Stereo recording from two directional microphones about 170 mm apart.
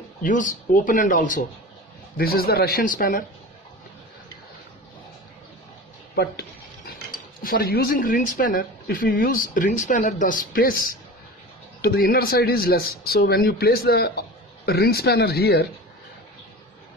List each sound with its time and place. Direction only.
0.2 s speech: 50° left (ahead or behind)
2.1 s speech: 65° left (ahead or behind)
7.4 s speech: 60° left (ahead or behind)